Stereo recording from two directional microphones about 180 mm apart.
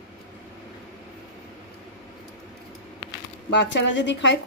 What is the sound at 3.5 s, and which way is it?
Speech, 75° left (ahead or behind).